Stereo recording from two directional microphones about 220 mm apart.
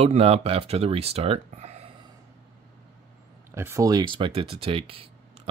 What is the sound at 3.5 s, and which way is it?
Speech, 10° right (ahead or behind).